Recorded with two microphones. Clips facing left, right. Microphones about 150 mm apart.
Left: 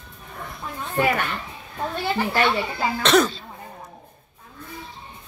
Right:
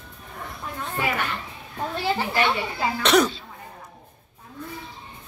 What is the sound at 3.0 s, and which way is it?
Speech, 15° right (ahead or behind).